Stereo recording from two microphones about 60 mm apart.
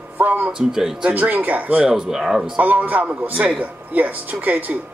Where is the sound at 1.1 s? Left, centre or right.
Right.